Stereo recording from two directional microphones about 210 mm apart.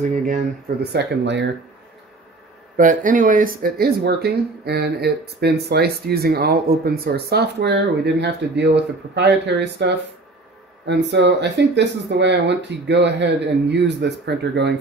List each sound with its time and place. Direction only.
0.9 s speech: 55° right (ahead or behind)
2.8 s speech: 40° right (ahead or behind)